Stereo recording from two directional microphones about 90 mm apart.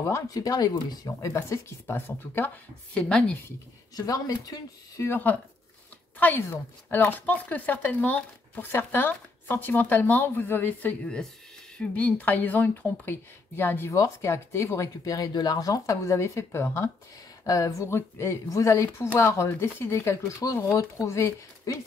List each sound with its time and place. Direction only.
0.0 s speech: 35° left (ahead or behind)
1.2 s speech: 35° left (ahead or behind)
3.0 s a woman's voice: 10° left (ahead or behind)
3.9 s speech: 40° left (ahead or behind)
5.1 s speech: 20° left (ahead or behind)
13.8 s speech: 35° left (ahead or behind)
17.5 s speech: 40° left (ahead or behind)
17.8 s speech: 30° left (ahead or behind)